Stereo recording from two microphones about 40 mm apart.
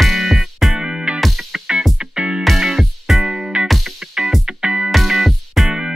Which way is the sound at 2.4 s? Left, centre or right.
Centre.